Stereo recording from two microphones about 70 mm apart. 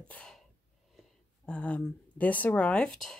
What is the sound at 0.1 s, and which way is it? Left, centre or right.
Gasp, centre.